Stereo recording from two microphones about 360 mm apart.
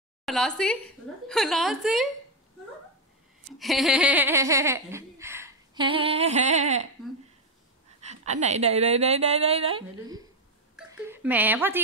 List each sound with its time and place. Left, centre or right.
0.2 s a woman's voice: centre
3.5 s giggle: centre
8.0 s giggle: centre
10.9 s speech: centre